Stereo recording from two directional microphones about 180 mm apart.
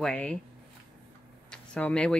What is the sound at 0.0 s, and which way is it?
Speech, 5° left (ahead or behind).